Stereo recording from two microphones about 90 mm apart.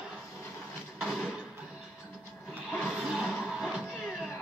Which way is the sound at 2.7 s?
Centre (ahead or behind).